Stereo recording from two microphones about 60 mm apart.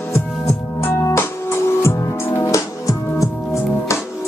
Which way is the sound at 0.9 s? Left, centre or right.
Left.